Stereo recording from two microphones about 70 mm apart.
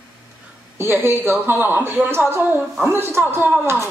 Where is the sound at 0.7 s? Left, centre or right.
Right.